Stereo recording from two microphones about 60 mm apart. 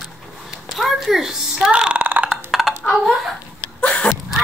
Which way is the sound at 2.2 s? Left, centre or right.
Centre.